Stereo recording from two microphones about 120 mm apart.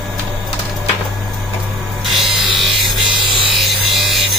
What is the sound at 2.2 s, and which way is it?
Music, centre (ahead or behind).